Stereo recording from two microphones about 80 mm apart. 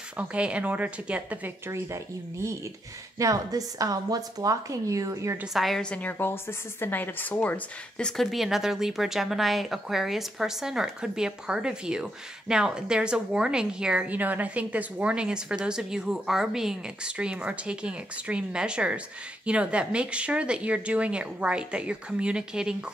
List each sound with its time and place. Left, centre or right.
0.2 s speech: centre
3.2 s a woman's voice: right
5.5 s a woman's voice: centre
5.8 s speech: centre
8.2 s speech: centre